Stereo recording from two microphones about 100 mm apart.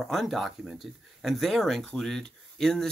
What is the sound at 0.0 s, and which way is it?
Speech, centre (ahead or behind).